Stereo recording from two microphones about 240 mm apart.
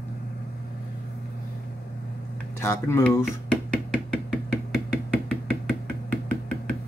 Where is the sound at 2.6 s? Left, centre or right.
Centre.